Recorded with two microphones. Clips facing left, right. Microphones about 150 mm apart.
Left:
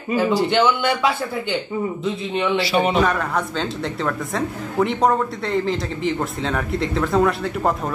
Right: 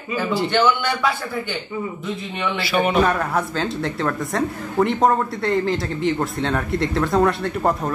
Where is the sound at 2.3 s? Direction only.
30° left (ahead or behind).